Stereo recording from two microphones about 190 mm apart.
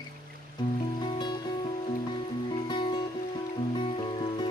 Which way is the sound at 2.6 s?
25° left (ahead or behind).